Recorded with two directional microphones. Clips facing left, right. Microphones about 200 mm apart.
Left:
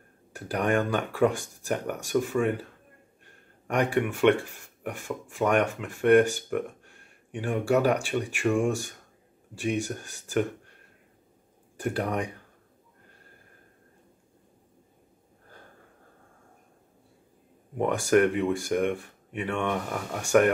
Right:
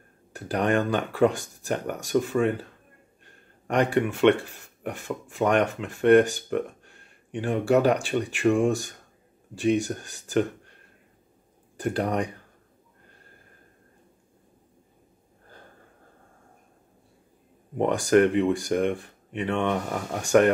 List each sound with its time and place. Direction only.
0.3 s speech: 10° left (ahead or behind)
3.6 s speech: 10° left (ahead or behind)
11.8 s speech: 5° left (ahead or behind)
17.8 s speech: 10° left (ahead or behind)